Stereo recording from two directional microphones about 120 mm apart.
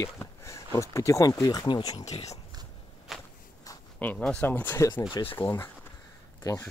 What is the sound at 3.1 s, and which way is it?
Walk, centre (ahead or behind).